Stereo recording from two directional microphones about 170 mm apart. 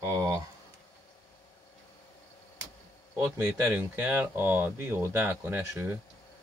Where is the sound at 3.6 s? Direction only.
10° right (ahead or behind).